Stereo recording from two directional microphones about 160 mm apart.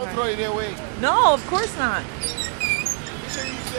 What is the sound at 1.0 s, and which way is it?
Speech, 25° left (ahead or behind).